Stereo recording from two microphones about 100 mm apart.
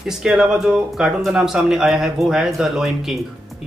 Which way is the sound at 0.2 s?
5° right (ahead or behind).